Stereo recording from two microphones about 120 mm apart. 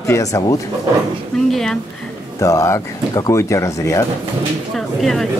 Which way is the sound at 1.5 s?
5° left (ahead or behind).